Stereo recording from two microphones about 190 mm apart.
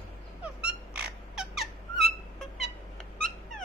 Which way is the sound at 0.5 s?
5° right (ahead or behind).